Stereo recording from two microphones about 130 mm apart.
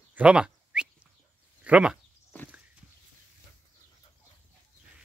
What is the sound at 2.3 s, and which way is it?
Walk, 15° left (ahead or behind).